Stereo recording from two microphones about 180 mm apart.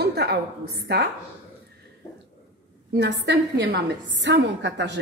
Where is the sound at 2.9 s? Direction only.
70° right (ahead or behind).